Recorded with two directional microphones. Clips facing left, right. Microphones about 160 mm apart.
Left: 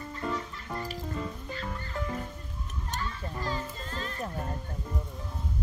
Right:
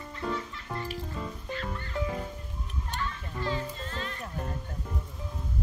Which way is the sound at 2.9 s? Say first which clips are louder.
Even; 40° left (ahead or behind).